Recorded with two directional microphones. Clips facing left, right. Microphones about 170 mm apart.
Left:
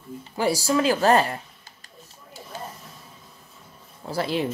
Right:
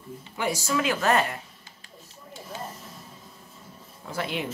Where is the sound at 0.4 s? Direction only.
35° left (ahead or behind).